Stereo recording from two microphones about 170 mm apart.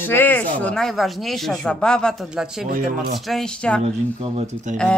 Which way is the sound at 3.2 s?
5° left (ahead or behind).